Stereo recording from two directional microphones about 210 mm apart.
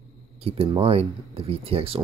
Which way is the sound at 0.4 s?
25° right (ahead or behind).